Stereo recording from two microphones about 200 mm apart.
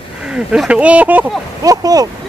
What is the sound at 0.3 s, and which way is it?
Speech, 5° right (ahead or behind).